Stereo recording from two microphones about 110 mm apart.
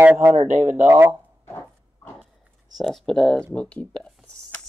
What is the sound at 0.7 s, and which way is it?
Speech, 20° right (ahead or behind).